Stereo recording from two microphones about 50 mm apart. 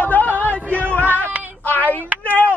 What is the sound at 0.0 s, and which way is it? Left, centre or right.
Music, left.